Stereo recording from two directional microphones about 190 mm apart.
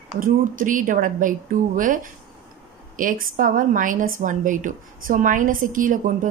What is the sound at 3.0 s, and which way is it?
A woman's voice, 45° right (ahead or behind).